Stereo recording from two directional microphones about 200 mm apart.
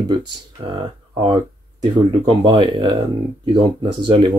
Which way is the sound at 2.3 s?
25° right (ahead or behind).